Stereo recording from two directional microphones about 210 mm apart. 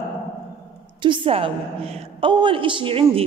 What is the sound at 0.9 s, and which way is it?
A woman's voice, 25° right (ahead or behind).